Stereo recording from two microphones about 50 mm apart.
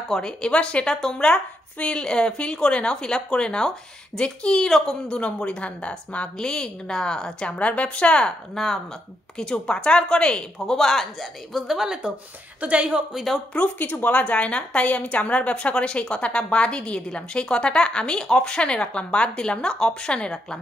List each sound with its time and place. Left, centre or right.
0.1 s a woman's voice: centre
4.6 s a woman's voice: centre
5.0 s a woman's voice: centre
7.5 s a woman's voice: left
8.6 s a woman's voice: centre
9.4 s a woman's voice: centre
10.8 s a woman's voice: centre
12.6 s speech: right
13.1 s a woman's voice: centre
13.6 s a woman's voice: left